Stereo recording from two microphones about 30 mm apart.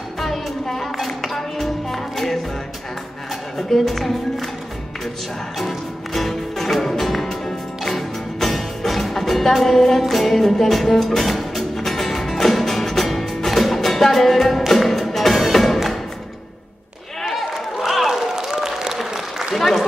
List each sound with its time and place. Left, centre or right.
0.2 s music: centre
3.5 s speech: centre
5.6 s music: centre
7.2 s music: centre
7.9 s music: centre
17.2 s a sound: centre
18.3 s applause: centre
19.5 s applause: centre